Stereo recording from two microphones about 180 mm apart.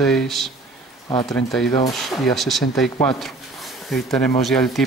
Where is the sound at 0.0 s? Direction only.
Centre (ahead or behind).